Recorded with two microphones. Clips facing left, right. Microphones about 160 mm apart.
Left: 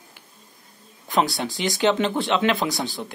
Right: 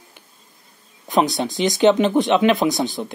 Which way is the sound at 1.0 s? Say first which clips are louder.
Right 4 dB; 20° right (ahead or behind).